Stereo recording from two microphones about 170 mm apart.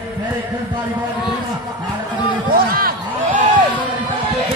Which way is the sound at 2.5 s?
60° right (ahead or behind).